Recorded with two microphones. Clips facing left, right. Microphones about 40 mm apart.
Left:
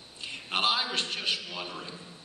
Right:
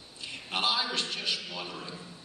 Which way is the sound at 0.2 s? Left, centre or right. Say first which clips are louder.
Left 2 dB; left.